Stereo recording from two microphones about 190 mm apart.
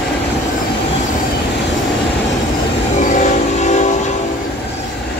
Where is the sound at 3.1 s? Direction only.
40° left (ahead or behind).